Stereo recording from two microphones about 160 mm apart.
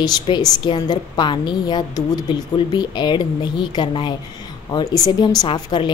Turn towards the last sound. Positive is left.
turn(degrees=30)  # may be behind; listen again after turning